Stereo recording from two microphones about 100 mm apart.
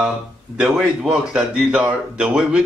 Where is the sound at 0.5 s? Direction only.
10° right (ahead or behind).